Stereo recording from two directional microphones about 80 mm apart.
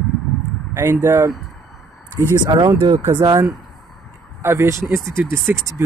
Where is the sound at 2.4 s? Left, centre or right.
Right.